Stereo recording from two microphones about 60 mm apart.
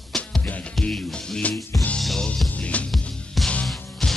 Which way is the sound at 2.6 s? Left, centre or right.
Left.